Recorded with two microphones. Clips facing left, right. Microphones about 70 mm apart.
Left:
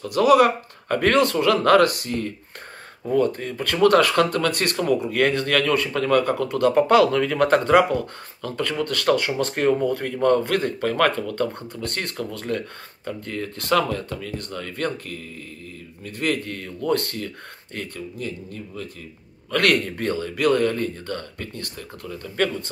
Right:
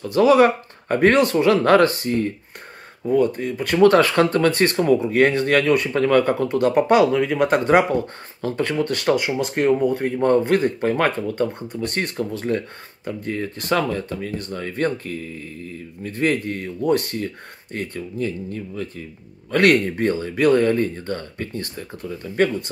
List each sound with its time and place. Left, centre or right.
0.1 s speech: right
3.1 s speech: centre
3.8 s speech: right
5.9 s speech: right; by 7.6 s centre
7.6 s speech: right
17.7 s speech: right